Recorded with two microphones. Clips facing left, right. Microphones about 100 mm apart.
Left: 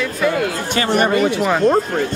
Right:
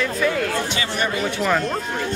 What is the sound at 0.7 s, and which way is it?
Speech, 50° left (ahead or behind).